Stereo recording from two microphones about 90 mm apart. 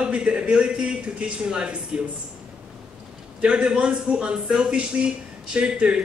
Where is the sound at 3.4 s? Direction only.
10° right (ahead or behind).